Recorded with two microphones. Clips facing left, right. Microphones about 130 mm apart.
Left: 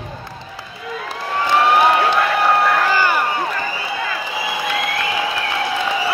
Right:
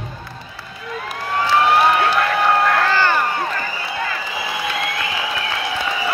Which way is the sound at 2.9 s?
10° left (ahead or behind).